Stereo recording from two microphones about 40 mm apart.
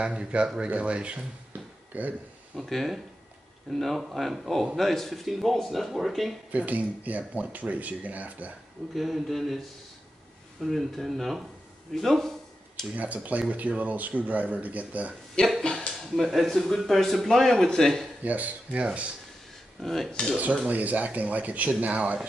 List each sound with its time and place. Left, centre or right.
0.0 s speech: right
1.5 s a sound: right
2.5 s speech: centre
6.5 s speech: right
8.9 s speech: centre
11.9 s a sound: centre
12.9 s speech: right
15.6 s speech: left
16.0 s speech: centre
18.2 s speech: right
19.8 s speech: centre
20.6 s speech: right